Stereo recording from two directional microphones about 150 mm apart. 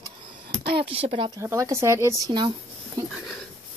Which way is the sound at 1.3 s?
20° right (ahead or behind).